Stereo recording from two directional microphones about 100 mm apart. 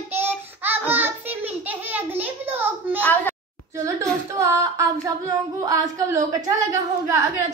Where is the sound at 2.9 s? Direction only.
15° left (ahead or behind).